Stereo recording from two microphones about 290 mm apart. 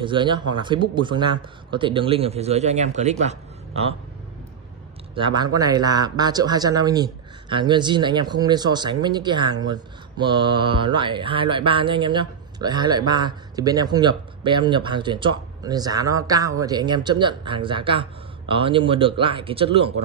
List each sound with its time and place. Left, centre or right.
0.0 s speech: centre
5.1 s speech: centre